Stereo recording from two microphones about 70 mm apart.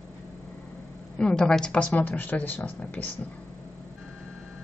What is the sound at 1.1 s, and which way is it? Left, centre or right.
Speech, centre.